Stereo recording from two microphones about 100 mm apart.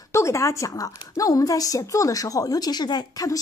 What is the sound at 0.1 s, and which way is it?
A woman's voice, 30° left (ahead or behind).